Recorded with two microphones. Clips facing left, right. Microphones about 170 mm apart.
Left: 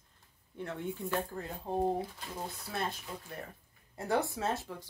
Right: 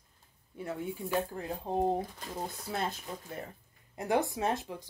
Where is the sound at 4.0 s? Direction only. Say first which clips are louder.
Right 2 dB; 15° right (ahead or behind).